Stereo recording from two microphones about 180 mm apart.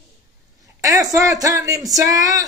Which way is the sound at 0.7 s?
20° right (ahead or behind).